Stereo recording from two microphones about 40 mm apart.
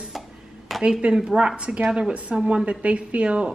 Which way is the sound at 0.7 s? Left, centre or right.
Centre.